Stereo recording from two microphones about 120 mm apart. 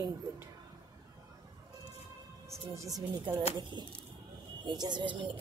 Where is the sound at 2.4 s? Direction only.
25° right (ahead or behind).